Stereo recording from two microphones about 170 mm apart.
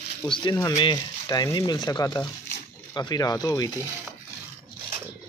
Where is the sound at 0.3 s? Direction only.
25° left (ahead or behind).